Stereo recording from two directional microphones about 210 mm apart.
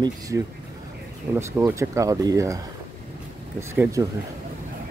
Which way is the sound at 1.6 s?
15° right (ahead or behind).